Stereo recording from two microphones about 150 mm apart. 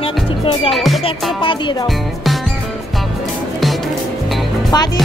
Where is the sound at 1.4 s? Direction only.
35° left (ahead or behind).